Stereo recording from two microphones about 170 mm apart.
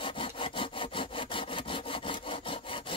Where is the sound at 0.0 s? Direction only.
30° left (ahead or behind).